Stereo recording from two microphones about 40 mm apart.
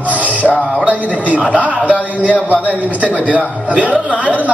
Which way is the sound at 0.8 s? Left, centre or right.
Right.